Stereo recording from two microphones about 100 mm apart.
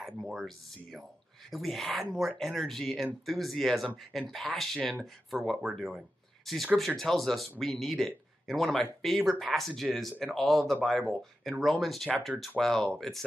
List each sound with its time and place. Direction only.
0.5 s speech: centre (ahead or behind)